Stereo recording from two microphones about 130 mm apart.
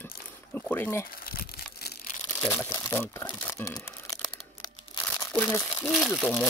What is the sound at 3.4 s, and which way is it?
Crumpling, 25° left (ahead or behind).